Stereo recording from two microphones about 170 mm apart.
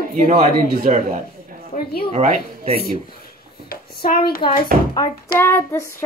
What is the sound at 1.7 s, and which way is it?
Speech, 65° left (ahead or behind).